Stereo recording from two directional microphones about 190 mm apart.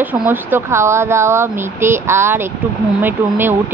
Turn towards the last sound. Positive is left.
turn(degrees=-10)  # may be behind; listen again after turning